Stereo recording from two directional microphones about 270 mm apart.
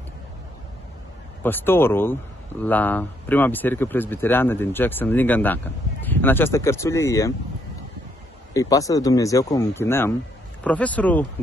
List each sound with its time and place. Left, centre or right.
1.4 s speech: centre
8.5 s speech: centre